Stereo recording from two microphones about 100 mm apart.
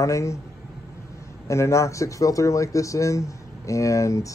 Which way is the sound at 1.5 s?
30° left (ahead or behind).